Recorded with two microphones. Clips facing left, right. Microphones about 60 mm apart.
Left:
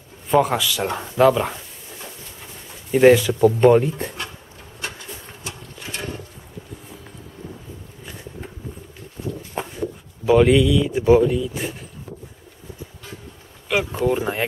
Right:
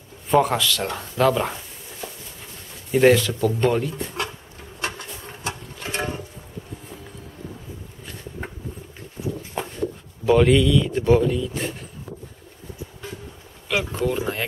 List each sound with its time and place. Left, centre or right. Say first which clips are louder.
0.3 s speech: left 1 dB; centre
1.2 s speech: left 4 dB; centre
2.9 s speech: left 3 dB; centre
5.4 s a sound: right 4 dB; right
10.2 s speech: left 2 dB; centre
13.7 s speech: left 3 dB; centre